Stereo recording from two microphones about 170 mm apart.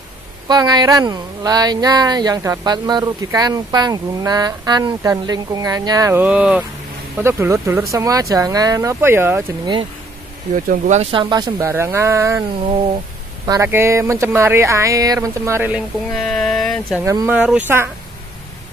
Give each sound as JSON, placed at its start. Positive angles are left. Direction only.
{"t": 0.5, "sound": "speech", "side_deg": -25}
{"t": 6.2, "sound": "speech", "side_deg": -5}
{"t": 10.7, "sound": "speech", "side_deg": -40}
{"t": 13.5, "sound": "speech", "side_deg": -15}
{"t": 16.2, "sound": "speech", "side_deg": 0}
{"t": 17.0, "sound": "speech", "side_deg": -20}
{"t": 17.3, "sound": "speech", "side_deg": -10}